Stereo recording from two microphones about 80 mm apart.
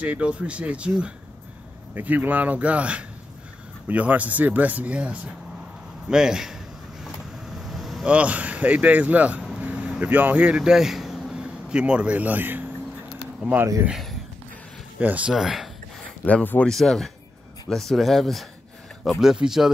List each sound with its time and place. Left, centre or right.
0.0 s a man's voice: centre
7.4 s vehicle: centre
8.1 s speech: centre
9.6 s vehicle: centre
13.4 s speech: centre
15.0 s speech: centre
15.3 s speech: centre